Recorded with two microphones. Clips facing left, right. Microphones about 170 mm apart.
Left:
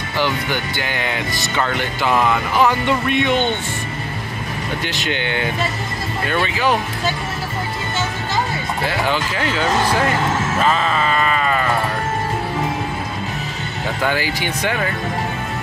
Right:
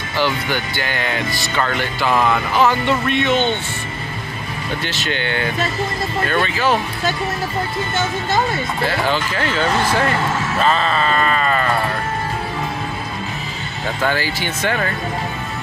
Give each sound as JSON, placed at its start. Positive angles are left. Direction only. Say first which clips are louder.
{"t": 0.2, "sound": "speech", "louder": "right 1 dB", "side_deg": 15}
{"t": 4.8, "sound": "speech", "louder": "even", "side_deg": 15}
{"t": 8.8, "sound": "speech", "louder": "right 1 dB", "side_deg": 15}
{"t": 10.6, "sound": "sheep", "louder": "right 2 dB", "side_deg": 10}
{"t": 14.0, "sound": "speech", "louder": "even", "side_deg": 15}